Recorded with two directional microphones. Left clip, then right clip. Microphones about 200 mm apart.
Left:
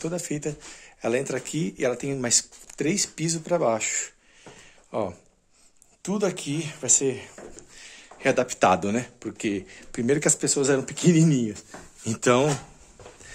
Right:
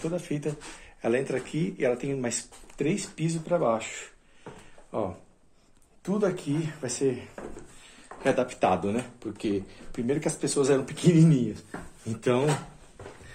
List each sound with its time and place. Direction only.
0.0 s speech: 45° left (ahead or behind)
8.2 s speech: 55° left (ahead or behind)